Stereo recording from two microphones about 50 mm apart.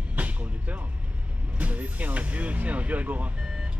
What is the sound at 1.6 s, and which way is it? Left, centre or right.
Speech, right.